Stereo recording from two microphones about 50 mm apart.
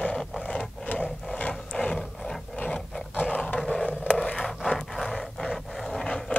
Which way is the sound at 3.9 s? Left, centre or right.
Left.